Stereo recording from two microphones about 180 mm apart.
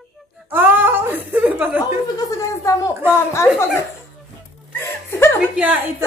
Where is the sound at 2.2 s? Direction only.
15° left (ahead or behind).